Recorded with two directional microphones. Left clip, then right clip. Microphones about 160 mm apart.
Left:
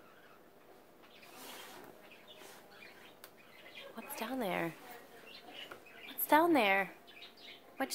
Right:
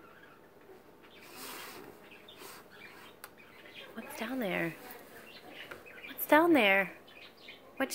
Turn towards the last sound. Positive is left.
turn(degrees=-20)  # may be behind; listen again after turning